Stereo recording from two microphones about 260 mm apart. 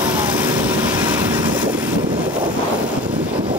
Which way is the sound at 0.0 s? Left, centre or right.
Centre.